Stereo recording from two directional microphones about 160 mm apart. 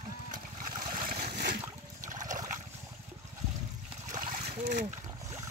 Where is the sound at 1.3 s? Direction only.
75° right (ahead or behind).